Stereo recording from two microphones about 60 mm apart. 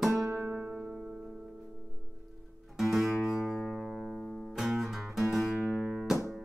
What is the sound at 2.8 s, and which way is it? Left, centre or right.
Music, centre.